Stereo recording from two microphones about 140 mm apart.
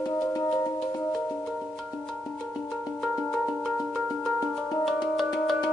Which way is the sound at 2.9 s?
Centre (ahead or behind).